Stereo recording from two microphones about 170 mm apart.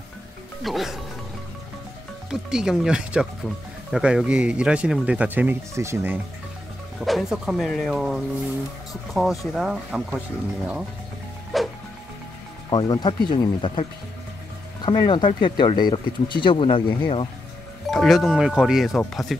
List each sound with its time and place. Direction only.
0.7 s speech: centre (ahead or behind)
2.5 s speech: 5° right (ahead or behind)
7.0 s speech: centre (ahead or behind)
11.5 s music: centre (ahead or behind)
12.6 s speech: 25° left (ahead or behind)
17.8 s speech: centre (ahead or behind)